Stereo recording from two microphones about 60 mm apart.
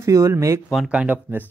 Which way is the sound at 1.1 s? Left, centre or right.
Right.